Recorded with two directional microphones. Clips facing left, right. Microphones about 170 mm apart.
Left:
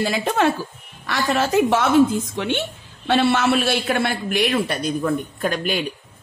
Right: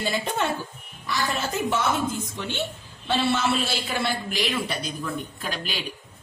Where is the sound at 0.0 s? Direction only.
80° left.